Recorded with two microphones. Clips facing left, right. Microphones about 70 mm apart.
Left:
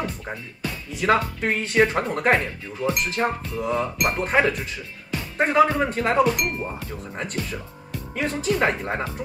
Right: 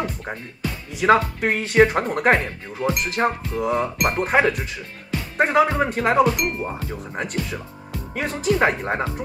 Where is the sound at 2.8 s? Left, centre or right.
Right.